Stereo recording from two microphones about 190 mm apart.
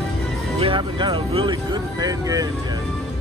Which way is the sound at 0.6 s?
25° right (ahead or behind).